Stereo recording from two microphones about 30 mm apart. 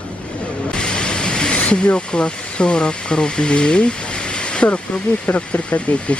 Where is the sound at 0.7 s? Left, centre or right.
Left.